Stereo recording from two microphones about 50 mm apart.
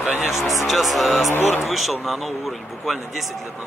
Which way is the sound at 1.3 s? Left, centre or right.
Left.